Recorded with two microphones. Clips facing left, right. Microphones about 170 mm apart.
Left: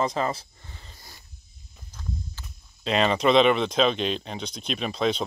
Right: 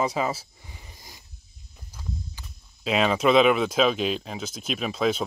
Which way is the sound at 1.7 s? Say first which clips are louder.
Left 1 dB; 10° right (ahead or behind).